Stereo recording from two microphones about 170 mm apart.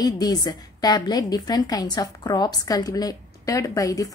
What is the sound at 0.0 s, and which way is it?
A woman's voice, 25° left (ahead or behind).